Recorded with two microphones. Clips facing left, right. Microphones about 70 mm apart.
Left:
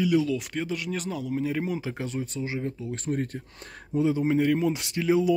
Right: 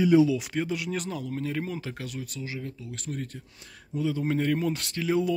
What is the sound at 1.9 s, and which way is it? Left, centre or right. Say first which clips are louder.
Speech: left 5 dB; left.